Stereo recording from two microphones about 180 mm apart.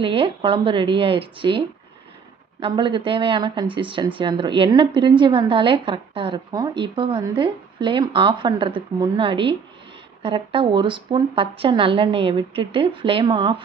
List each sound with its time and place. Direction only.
0.0 s speech: 30° right (ahead or behind)
2.6 s speech: 25° right (ahead or behind)